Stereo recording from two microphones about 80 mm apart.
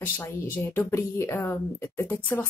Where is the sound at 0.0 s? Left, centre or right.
Left.